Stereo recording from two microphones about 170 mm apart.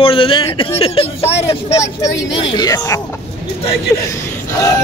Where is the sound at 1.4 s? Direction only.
20° left (ahead or behind).